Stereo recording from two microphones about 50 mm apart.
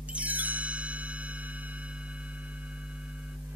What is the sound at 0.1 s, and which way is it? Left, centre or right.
Music, right.